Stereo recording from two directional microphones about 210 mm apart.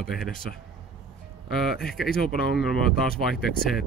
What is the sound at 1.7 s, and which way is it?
Speech, centre (ahead or behind).